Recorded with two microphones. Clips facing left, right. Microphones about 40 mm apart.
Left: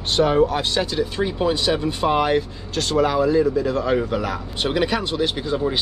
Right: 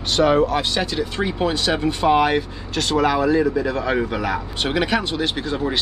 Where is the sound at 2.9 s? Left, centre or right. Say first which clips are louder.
Even; right.